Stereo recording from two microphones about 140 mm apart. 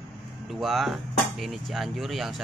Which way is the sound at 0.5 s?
Centre (ahead or behind).